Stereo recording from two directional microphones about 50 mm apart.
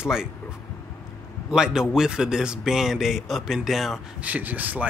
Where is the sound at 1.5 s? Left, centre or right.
Centre.